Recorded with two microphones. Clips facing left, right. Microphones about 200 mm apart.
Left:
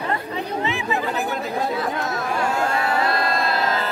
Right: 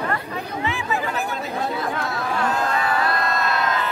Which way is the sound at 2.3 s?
10° left (ahead or behind).